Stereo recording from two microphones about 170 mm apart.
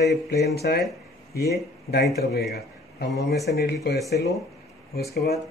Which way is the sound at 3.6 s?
65° left (ahead or behind).